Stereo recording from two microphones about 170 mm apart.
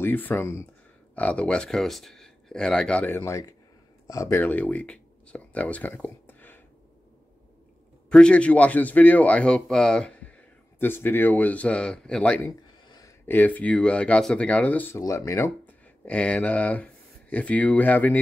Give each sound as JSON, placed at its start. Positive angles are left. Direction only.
{"t": 0.0, "sound": "speech", "side_deg": 10}
{"t": 8.1, "sound": "speech", "side_deg": 5}
{"t": 12.4, "sound": "a sound", "side_deg": 20}
{"t": 13.3, "sound": "speech", "side_deg": 10}